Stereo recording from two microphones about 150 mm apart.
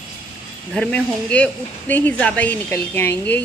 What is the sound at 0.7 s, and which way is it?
Speech, 5° left (ahead or behind).